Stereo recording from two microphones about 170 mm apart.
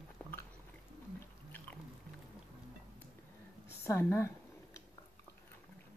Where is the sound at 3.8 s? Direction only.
15° left (ahead or behind).